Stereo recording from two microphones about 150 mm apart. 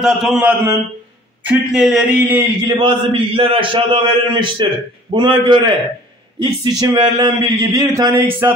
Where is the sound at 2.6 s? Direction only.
35° right (ahead or behind).